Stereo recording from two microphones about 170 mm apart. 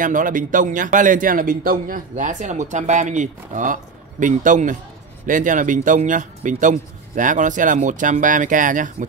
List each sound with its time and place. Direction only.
0.0 s speech: 50° right (ahead or behind)